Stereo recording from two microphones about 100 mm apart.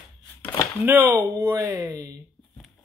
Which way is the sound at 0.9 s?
20° right (ahead or behind).